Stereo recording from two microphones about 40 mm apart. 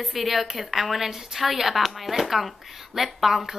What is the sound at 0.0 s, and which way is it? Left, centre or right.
A woman's voice, centre.